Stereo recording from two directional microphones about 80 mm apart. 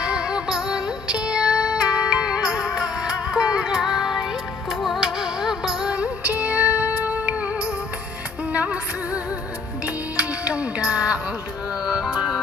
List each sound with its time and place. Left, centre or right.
0.0 s music: centre
2.4 s music: left
2.7 s music: centre
5.9 s music: centre
8.5 s music: centre